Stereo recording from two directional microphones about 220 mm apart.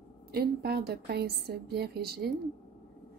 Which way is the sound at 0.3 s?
45° right (ahead or behind).